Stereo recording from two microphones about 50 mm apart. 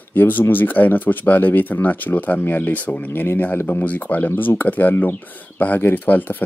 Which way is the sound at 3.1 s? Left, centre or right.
Left.